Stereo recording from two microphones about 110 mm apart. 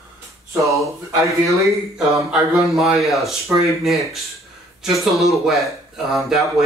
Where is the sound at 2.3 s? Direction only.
Centre (ahead or behind).